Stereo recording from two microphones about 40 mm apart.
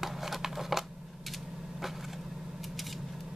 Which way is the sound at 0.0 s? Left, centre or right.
Centre.